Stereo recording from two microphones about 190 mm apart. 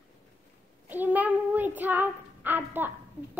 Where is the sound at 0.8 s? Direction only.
10° right (ahead or behind).